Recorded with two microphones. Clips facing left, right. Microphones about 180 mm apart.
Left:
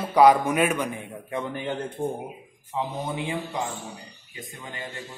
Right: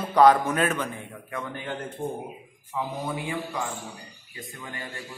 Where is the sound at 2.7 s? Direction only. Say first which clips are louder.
Left 1 dB; 20° left (ahead or behind).